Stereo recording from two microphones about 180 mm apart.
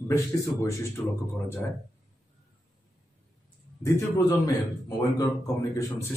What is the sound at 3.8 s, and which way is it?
A man's voice, 20° left (ahead or behind).